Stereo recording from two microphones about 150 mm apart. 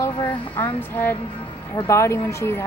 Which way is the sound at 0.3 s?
15° left (ahead or behind).